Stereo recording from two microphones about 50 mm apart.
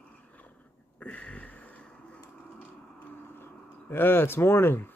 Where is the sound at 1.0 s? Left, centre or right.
Left.